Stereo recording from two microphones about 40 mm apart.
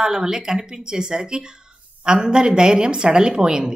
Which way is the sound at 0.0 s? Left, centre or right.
Centre.